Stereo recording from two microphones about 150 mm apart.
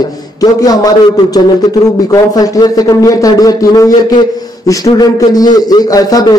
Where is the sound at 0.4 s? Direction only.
25° left (ahead or behind).